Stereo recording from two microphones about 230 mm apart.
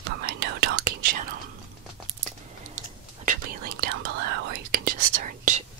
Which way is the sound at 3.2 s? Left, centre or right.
Right.